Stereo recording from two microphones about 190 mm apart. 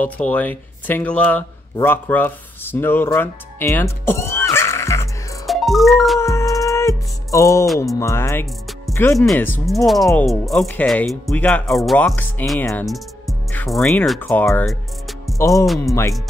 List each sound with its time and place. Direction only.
0.0 s speech: 10° left (ahead or behind)
5.5 s music: centre (ahead or behind)
6.1 s music: 15° left (ahead or behind)
7.8 s speech: 15° left (ahead or behind)
9.1 s speech: centre (ahead or behind)
14.2 s speech: 15° left (ahead or behind)
14.7 s music: centre (ahead or behind)
15.3 s speech: 15° left (ahead or behind)